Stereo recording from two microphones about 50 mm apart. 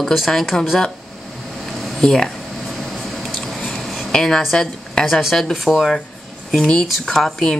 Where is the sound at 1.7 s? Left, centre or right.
Centre.